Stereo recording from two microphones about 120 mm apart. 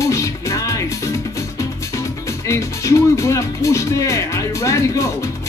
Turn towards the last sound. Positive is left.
turn(degrees=25)  # may be behind; listen again after turning